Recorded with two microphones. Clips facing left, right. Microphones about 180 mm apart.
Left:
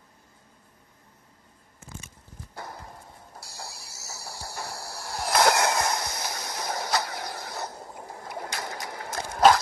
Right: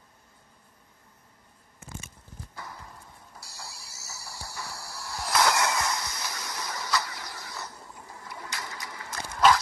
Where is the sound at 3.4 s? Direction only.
50° left (ahead or behind).